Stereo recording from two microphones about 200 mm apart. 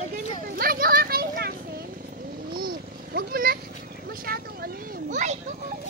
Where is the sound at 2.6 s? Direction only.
50° right (ahead or behind).